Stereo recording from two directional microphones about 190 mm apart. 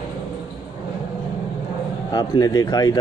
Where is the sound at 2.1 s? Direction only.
20° left (ahead or behind).